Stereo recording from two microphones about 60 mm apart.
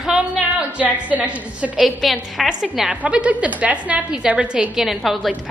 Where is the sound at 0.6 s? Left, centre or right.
Right.